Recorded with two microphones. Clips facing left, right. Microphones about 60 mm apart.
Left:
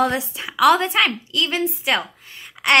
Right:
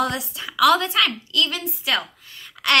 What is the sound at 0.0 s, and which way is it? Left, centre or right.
A woman's voice, left.